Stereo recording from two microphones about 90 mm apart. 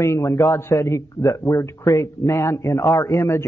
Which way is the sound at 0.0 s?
30° left (ahead or behind).